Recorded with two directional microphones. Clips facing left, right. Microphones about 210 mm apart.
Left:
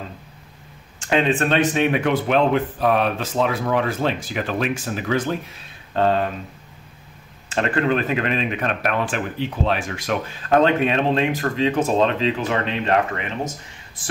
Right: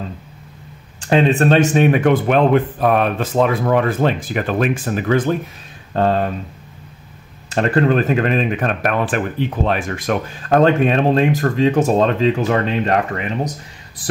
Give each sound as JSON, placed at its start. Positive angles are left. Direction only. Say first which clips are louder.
{"t": 1.0, "sound": "speech", "louder": "right 5 dB", "side_deg": -35}
{"t": 5.9, "sound": "speech", "louder": "right 2 dB", "side_deg": -40}
{"t": 7.4, "sound": "speech", "louder": "right 5 dB", "side_deg": -40}